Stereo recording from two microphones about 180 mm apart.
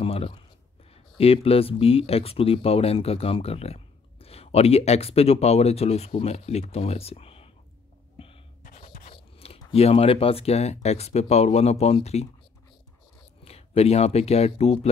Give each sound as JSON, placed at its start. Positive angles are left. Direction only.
{"t": 0.0, "sound": "a sound", "side_deg": 35}
{"t": 1.1, "sound": "speech", "side_deg": 35}
{"t": 8.2, "sound": "a sound", "side_deg": 30}
{"t": 9.1, "sound": "crunch", "side_deg": 35}
{"t": 9.6, "sound": "speech", "side_deg": 30}
{"t": 13.4, "sound": "speech", "side_deg": 35}